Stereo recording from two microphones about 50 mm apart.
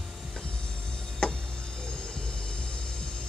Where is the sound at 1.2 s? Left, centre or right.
Centre.